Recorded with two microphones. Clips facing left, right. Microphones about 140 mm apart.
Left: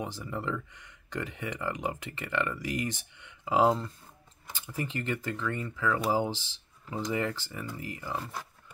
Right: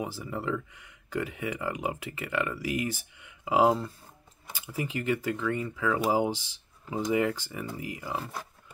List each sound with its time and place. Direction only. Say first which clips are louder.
0.0 s speech: right 2 dB; 5° right (ahead or behind)